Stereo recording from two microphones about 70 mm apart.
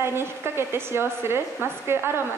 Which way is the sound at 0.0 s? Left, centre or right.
Right.